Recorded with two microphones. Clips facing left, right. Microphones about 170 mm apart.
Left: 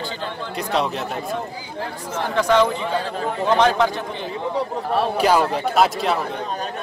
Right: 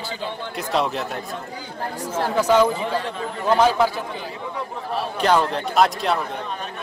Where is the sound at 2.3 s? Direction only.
5° right (ahead or behind).